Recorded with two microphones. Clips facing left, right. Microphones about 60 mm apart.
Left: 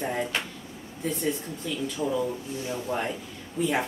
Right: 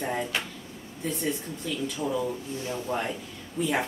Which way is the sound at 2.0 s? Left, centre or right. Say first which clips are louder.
Left 2 dB; centre.